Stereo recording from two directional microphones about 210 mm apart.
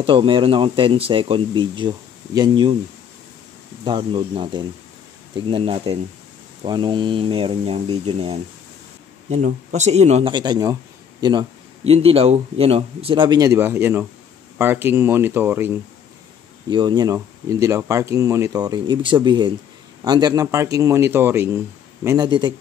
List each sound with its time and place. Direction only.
0.0 s a man's voice: 25° right (ahead or behind)
3.8 s a man's voice: 25° right (ahead or behind)
16.6 s a man's voice: 20° right (ahead or behind)